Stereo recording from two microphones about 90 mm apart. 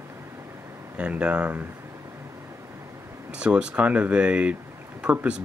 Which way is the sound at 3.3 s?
10° right (ahead or behind).